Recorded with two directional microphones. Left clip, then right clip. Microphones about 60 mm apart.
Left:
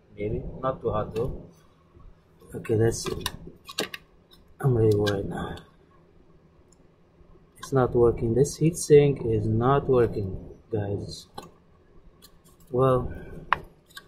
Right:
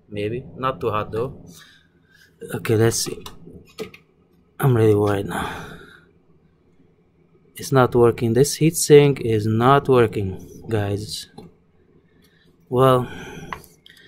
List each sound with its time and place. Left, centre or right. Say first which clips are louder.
0.1 s speech: right 5 dB; right
2.6 s speech: right 5 dB; right
3.0 s speech: right 3 dB; left
4.6 s speech: right 6 dB; right
7.7 s speech: right 6 dB; right
12.7 s speech: right 7 dB; right